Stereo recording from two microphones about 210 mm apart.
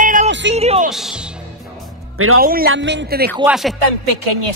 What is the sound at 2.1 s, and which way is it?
Speech, 85° right.